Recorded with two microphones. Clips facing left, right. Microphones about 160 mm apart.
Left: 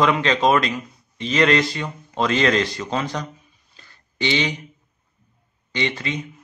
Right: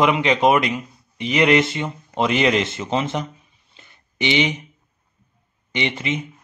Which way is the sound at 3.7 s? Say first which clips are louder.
Right 3 dB; 20° right (ahead or behind).